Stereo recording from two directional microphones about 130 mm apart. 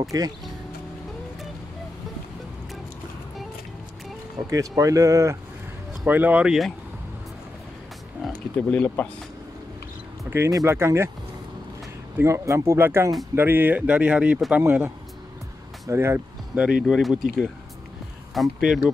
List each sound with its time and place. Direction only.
0.1 s speech: 30° right (ahead or behind)
4.5 s speech: 25° right (ahead or behind)
6.0 s speech: 15° right (ahead or behind)
8.2 s speech: 10° left (ahead or behind)
10.3 s speech: 20° right (ahead or behind)
12.2 s speech: 20° right (ahead or behind)
15.9 s speech: 20° right (ahead or behind)
16.8 s speech: centre (ahead or behind)
18.3 s speech: centre (ahead or behind)